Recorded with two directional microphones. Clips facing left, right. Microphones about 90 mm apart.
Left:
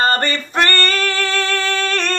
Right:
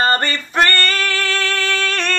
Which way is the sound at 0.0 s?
35° left (ahead or behind).